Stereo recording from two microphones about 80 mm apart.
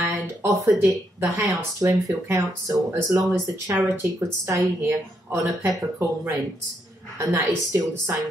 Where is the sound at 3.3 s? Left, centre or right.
Right.